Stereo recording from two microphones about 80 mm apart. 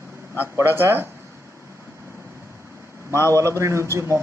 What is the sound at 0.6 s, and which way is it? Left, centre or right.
Speech, right.